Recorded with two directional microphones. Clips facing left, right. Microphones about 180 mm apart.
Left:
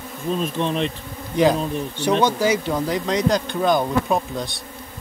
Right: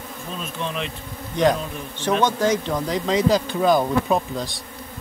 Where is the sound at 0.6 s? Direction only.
35° left (ahead or behind).